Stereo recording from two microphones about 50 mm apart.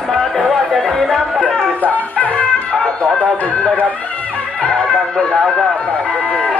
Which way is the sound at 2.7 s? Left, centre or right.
Centre.